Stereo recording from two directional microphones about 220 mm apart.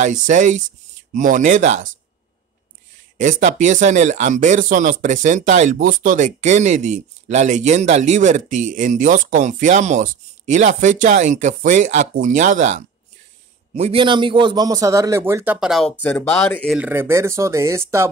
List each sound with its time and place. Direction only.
0.0 s speech: 35° right (ahead or behind)
3.2 s a man's voice: 35° right (ahead or behind); by 18.1 s 10° right (ahead or behind)